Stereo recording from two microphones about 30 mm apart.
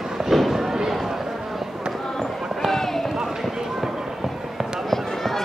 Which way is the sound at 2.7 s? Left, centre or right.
Centre.